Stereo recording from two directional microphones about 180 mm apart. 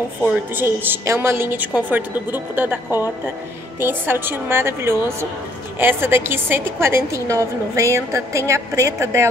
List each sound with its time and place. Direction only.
0.2 s a woman's voice: 10° right (ahead or behind)